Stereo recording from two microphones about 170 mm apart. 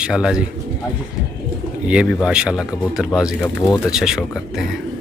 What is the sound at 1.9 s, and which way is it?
Speech, 5° right (ahead or behind).